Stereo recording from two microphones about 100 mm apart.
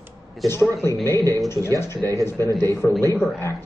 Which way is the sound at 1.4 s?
30° left (ahead or behind).